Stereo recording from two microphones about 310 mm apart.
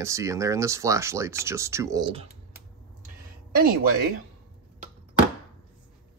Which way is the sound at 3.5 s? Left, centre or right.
Right.